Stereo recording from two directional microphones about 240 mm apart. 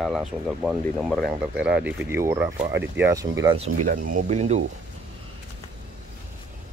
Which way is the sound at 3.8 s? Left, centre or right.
Right.